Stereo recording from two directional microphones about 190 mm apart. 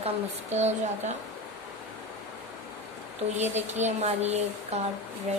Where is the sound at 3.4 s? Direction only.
35° right (ahead or behind).